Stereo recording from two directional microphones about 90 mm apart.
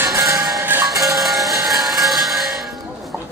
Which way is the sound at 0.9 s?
Centre (ahead or behind).